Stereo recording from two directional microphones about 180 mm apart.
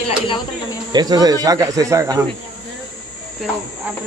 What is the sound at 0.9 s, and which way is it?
Speech, 20° right (ahead or behind).